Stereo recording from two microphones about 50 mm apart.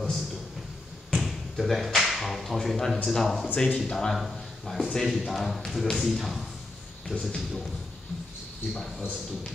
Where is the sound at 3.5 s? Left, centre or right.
Centre.